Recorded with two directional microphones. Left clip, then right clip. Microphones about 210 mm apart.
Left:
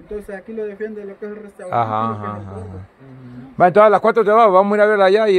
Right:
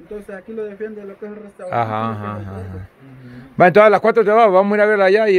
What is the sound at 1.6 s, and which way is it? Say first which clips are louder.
Speech: left 1 dB; 10° right (ahead or behind).